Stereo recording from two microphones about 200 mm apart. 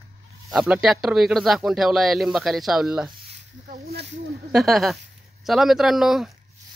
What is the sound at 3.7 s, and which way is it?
Speech, 45° right (ahead or behind).